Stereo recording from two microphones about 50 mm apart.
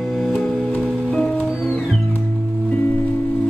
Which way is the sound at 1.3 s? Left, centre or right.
Centre.